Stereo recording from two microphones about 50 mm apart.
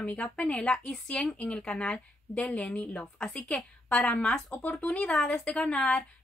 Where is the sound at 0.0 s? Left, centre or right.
Left.